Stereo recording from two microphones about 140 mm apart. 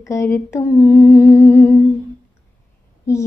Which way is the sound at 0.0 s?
20° left (ahead or behind).